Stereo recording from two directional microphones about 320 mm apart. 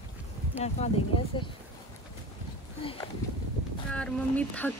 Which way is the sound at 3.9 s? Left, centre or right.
Centre.